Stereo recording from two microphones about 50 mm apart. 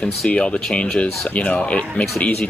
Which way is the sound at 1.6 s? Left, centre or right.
Left.